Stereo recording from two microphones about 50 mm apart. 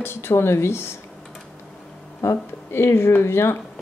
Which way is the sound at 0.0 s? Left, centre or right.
Left.